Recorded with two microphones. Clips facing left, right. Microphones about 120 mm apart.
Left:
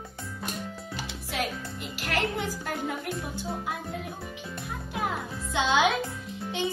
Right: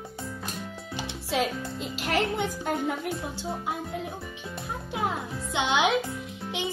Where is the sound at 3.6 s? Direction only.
20° right (ahead or behind).